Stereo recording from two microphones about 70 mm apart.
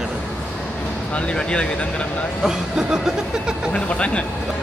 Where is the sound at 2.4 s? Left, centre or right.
Centre.